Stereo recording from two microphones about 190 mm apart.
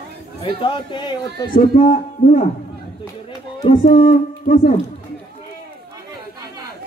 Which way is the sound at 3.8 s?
45° left (ahead or behind).